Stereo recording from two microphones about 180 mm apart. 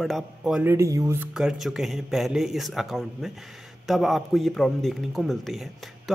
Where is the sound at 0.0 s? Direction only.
Centre (ahead or behind); by 1.1 s 15° right (ahead or behind).